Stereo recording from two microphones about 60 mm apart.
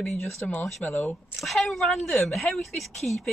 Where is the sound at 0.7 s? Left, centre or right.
Centre.